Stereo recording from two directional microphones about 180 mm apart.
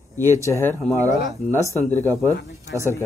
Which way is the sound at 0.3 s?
15° left (ahead or behind).